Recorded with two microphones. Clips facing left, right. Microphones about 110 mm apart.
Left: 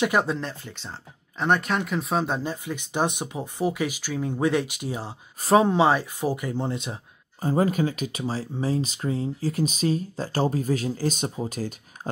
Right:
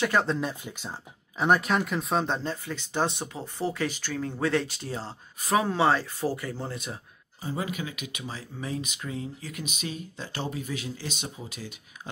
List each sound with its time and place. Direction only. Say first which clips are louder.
0.0 s speech: left 2 dB; 15° left (ahead or behind)
0.4 s speech: right 2 dB; 10° right (ahead or behind); by 5.1 s 15° left (ahead or behind)
5.4 s speech: left 5 dB; 30° left (ahead or behind)
7.4 s speech: left 10 dB; 45° left (ahead or behind)